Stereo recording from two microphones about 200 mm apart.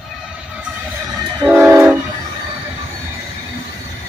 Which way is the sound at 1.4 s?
10° right (ahead or behind).